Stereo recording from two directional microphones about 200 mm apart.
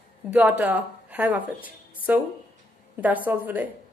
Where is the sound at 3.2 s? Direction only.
10° right (ahead or behind).